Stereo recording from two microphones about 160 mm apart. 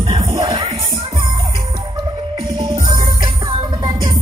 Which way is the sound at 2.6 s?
25° right (ahead or behind).